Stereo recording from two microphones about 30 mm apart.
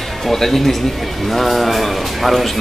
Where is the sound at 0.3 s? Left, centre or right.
Centre.